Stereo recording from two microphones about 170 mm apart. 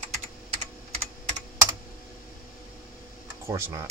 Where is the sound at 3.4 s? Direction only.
15° right (ahead or behind).